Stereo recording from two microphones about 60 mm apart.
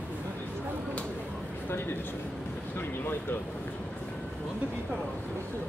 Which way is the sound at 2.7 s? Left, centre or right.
Left.